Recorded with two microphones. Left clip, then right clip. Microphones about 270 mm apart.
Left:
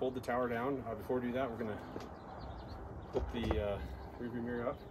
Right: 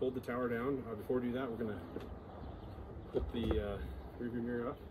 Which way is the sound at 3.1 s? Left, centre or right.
Left.